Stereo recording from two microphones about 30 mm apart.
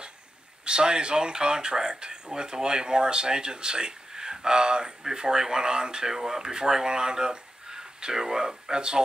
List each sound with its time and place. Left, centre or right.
0.7 s speech: right
4.1 s a sound: right
5.0 s speech: right
6.1 s speech: centre